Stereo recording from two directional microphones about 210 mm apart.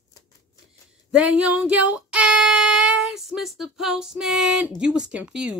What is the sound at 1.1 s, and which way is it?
Speech, 5° right (ahead or behind).